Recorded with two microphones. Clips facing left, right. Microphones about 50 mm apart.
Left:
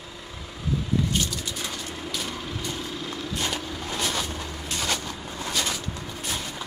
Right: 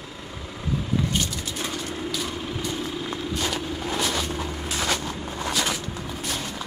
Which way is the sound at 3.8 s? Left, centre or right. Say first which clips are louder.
Right 2 dB; centre.